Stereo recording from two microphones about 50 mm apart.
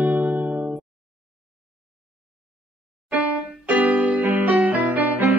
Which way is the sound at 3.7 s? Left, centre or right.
Right.